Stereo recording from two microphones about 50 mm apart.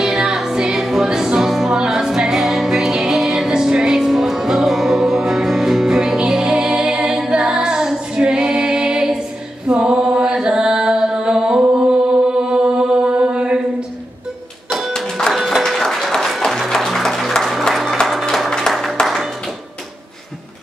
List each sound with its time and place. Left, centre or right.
0.0 s music: centre
9.7 s mantra: centre
11.8 s music: right
14.9 s music: centre
15.3 s music: centre
17.4 s applause: centre
18.3 s music: centre
18.7 s a sound: centre
19.0 s clapping: centre